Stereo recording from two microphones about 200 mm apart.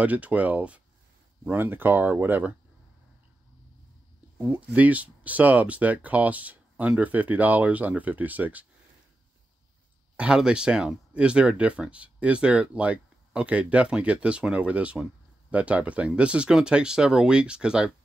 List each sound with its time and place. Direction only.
0.0 s speech: 5° right (ahead or behind)
4.4 s speech: 5° right (ahead or behind)
10.1 s speech: 5° right (ahead or behind)